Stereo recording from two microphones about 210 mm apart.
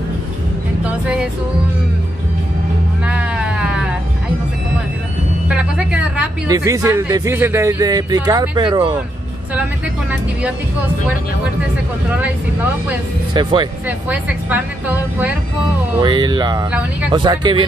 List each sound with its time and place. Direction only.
0.8 s speech: 5° right (ahead or behind)
3.1 s music: 5° right (ahead or behind)
5.5 s speech: 5° right (ahead or behind); by 8.9 s 20° right (ahead or behind)
13.3 s music: 20° right (ahead or behind)
13.8 s speech: 5° right (ahead or behind)
16.0 s music: 20° right (ahead or behind)